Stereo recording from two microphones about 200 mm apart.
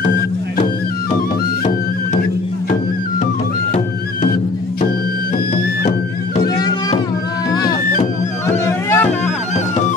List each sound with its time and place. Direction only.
3.7 s music: 40° left (ahead or behind)
6.4 s music: 20° left (ahead or behind)
8.6 s music: 10° left (ahead or behind)